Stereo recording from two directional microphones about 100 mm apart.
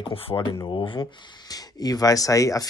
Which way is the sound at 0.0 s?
65° left (ahead or behind).